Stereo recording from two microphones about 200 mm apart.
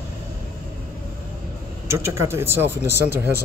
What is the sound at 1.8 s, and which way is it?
Speech, 15° right (ahead or behind).